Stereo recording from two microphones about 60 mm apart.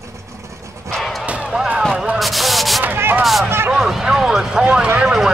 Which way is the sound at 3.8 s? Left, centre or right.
Centre.